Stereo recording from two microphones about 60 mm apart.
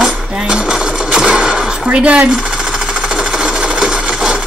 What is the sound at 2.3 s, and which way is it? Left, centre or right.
Sewing machine, centre.